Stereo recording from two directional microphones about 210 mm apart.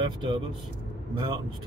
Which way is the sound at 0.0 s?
20° right (ahead or behind).